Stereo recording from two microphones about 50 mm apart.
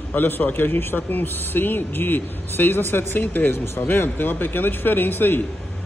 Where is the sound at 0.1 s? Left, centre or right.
Left.